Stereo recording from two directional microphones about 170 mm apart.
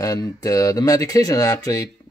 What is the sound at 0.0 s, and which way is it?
Speech, 20° left (ahead or behind).